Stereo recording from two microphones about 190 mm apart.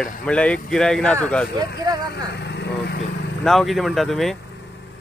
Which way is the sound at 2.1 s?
60° left (ahead or behind).